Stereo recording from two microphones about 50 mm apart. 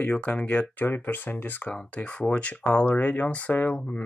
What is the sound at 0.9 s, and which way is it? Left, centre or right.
Speech, left.